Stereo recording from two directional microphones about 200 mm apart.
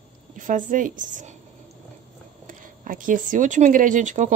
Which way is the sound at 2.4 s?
45° right (ahead or behind).